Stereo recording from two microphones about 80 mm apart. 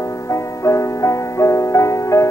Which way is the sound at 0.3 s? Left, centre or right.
Left.